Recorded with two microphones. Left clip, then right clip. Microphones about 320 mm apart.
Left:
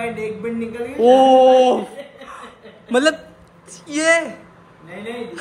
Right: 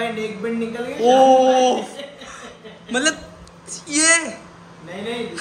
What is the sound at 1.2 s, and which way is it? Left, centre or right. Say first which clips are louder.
Speech: left 1 dB; centre.